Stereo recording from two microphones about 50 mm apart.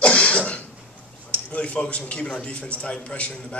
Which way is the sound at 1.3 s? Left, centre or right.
Left.